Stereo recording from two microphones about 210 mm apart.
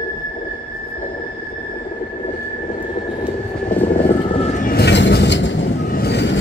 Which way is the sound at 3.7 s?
5° left (ahead or behind).